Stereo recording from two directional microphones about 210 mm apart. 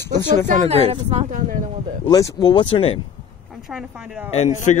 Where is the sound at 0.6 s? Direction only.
30° right (ahead or behind).